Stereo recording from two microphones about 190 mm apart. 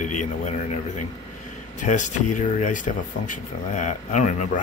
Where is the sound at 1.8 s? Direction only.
40° left (ahead or behind).